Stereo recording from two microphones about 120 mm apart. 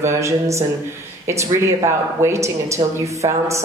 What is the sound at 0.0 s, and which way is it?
Speech, 25° right (ahead or behind).